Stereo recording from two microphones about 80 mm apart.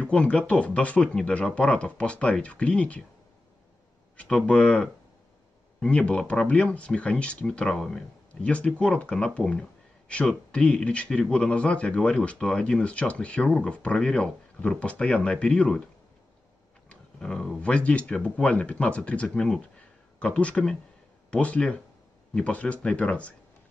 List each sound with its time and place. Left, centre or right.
0.0 s speech: centre
4.2 s speech: centre
16.9 s speech: centre